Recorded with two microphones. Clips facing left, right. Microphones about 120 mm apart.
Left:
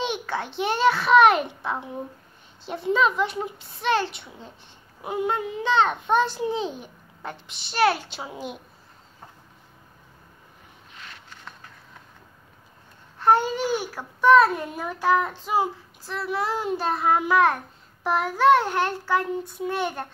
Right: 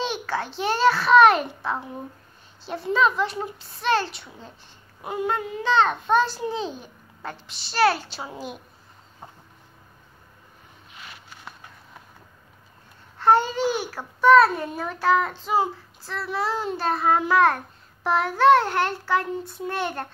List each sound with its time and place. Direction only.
0.0 s a child's voice: 20° left (ahead or behind)
2.6 s child singing: 20° left (ahead or behind)
5.0 s a child's voice: 20° left (ahead or behind)
11.0 s a sound: 10° right (ahead or behind)
13.2 s babbling: 10° left (ahead or behind)
14.2 s child singing: 15° left (ahead or behind)